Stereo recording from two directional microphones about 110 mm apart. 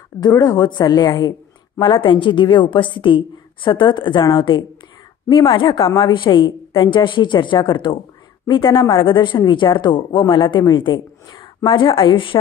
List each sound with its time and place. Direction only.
0.2 s a woman's voice: 35° left (ahead or behind)
1.8 s a woman's voice: 45° left (ahead or behind)